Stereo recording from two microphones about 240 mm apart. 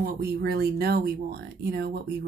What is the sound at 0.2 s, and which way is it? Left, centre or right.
A woman's voice, right.